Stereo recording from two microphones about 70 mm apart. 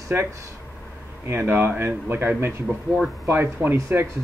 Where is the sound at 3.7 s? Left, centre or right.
Right.